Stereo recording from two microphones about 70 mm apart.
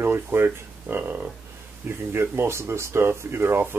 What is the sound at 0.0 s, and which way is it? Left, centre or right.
Speech, right.